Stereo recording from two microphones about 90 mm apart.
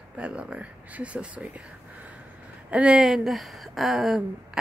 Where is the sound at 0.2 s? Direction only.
10° right (ahead or behind).